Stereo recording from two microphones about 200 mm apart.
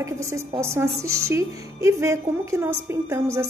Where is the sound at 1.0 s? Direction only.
90° right.